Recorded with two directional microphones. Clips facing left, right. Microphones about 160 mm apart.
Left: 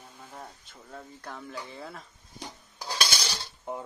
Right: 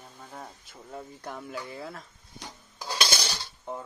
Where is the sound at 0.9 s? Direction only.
15° right (ahead or behind).